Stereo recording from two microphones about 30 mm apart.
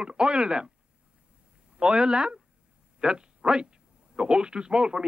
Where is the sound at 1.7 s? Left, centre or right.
Right.